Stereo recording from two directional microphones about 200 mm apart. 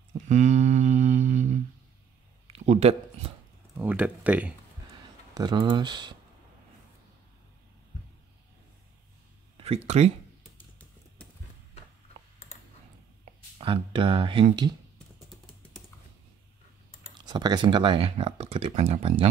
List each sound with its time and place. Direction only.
0.3 s a sound: 35° right (ahead or behind)
3.7 s speech: 10° right (ahead or behind)
5.3 s speech: 20° right (ahead or behind)
9.8 s speech: 30° right (ahead or behind)
13.2 s speech: 25° right (ahead or behind)
17.2 s speech: 20° right (ahead or behind)